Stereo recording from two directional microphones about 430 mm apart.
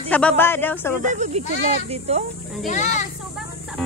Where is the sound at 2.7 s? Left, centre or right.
Centre.